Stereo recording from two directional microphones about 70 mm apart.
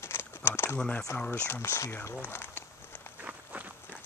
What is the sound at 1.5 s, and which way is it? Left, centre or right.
Speech, left.